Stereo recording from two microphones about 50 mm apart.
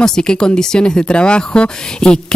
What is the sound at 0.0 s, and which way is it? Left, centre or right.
Speech, centre.